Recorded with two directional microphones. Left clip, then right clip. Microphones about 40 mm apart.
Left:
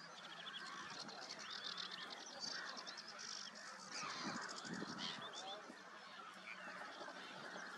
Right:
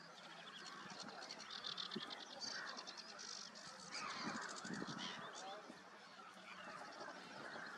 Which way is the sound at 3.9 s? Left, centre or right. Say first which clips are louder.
Even; right.